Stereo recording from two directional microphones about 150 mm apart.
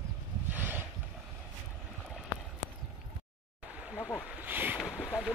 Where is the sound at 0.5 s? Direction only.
10° right (ahead or behind).